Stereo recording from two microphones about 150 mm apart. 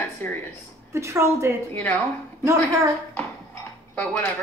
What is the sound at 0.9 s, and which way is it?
Speech, 20° right (ahead or behind).